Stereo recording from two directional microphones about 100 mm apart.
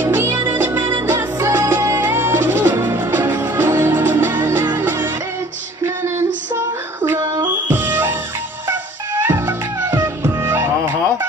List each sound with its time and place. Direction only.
0.0 s music: 25° right (ahead or behind)
6.0 s female singing: 25° right (ahead or behind)
7.4 s music: 20° right (ahead or behind)